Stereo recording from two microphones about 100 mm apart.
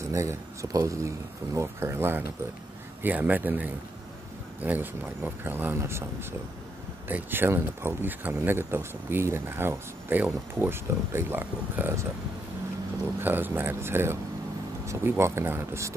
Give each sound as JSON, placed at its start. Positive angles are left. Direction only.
{"t": 0.0, "sound": "speech", "side_deg": -30}
{"t": 7.1, "sound": "speech", "side_deg": -20}
{"t": 13.2, "sound": "speech", "side_deg": -20}